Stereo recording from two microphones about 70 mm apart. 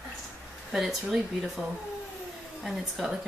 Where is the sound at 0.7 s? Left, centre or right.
Centre.